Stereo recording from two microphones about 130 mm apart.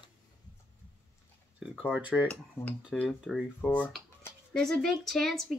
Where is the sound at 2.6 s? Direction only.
20° left (ahead or behind).